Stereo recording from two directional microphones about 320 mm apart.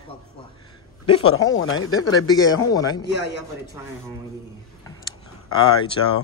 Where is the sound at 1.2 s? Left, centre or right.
Left.